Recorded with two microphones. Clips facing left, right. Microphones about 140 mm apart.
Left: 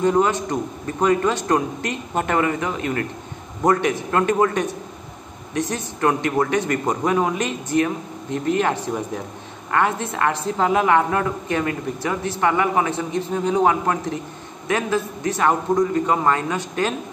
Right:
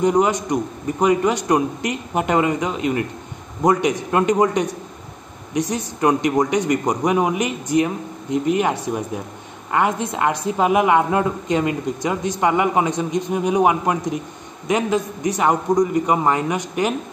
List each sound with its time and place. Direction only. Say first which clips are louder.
0.0 s a woman's voice: right 1 dB; 15° right (ahead or behind)